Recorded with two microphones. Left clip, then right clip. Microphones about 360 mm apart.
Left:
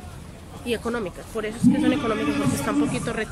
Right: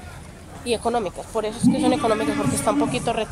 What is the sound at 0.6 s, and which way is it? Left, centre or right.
Speech, centre.